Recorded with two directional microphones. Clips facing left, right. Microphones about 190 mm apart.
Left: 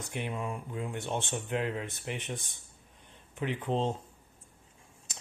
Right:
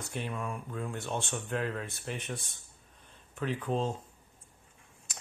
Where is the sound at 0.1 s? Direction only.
20° left (ahead or behind).